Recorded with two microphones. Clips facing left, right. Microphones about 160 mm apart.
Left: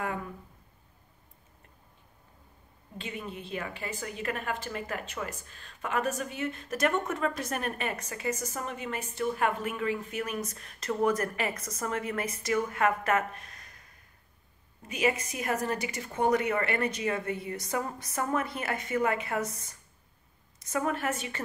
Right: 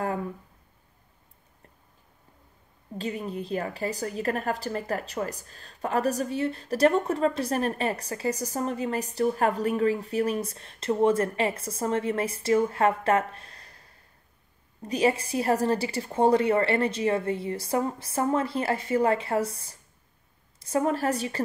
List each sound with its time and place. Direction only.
0.0 s speech: 35° right (ahead or behind)
3.0 s a woman's voice: 40° right (ahead or behind)